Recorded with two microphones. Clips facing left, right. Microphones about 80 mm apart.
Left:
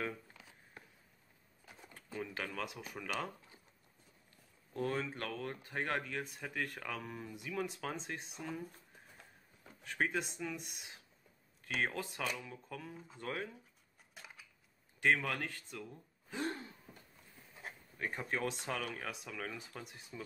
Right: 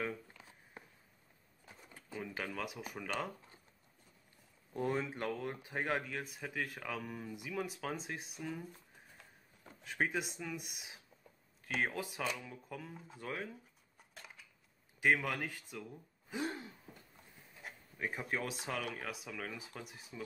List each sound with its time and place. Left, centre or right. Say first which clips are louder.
0.4 s a sound: right 2 dB; right
2.3 s speech: right 3 dB; centre
4.7 s speech: right 1 dB; centre
9.8 s speech: even; centre
14.1 s a sound: even; centre
15.0 s speech: even; centre
17.9 s speech: even; centre